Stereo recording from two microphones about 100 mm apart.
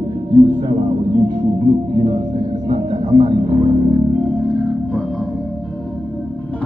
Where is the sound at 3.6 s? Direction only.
55° right (ahead or behind).